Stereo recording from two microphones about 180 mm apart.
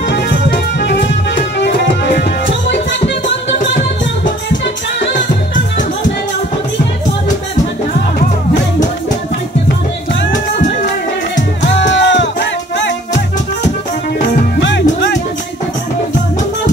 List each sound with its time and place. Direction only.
0.1 s music: 75° left (ahead or behind)
11.3 s music: 80° left
14.6 s music: 85° left